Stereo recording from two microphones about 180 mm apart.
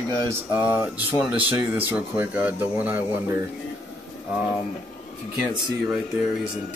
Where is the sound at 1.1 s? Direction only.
10° right (ahead or behind).